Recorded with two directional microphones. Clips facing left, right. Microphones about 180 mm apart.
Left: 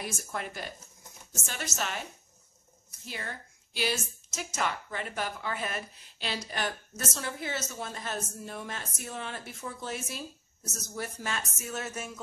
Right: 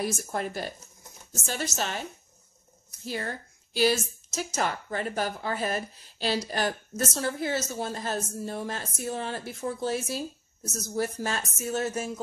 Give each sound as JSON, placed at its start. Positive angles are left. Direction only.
{"t": 0.0, "sound": "a woman's voice", "side_deg": -35}
{"t": 3.1, "sound": "a woman's voice", "side_deg": -40}